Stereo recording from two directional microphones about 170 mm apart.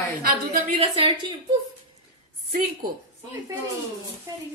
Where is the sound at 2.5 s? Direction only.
55° right (ahead or behind).